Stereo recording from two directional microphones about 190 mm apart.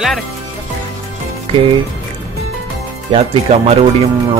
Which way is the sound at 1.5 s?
30° right (ahead or behind).